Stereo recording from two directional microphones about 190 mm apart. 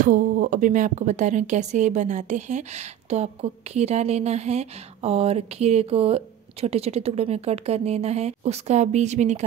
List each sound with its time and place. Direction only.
0.0 s speech: 45° right (ahead or behind)